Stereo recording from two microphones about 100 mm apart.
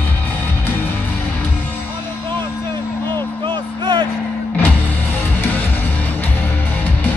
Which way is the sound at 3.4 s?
50° right (ahead or behind).